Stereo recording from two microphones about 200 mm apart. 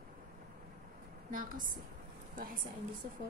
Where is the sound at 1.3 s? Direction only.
45° right (ahead or behind).